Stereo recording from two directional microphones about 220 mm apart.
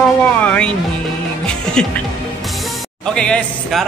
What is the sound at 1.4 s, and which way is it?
Music, 5° left (ahead or behind).